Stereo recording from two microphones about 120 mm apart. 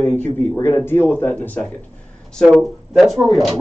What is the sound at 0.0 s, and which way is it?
A man's voice, 15° left (ahead or behind).